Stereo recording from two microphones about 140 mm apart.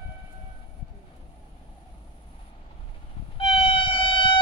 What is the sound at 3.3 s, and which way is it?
Train, 40° left (ahead or behind).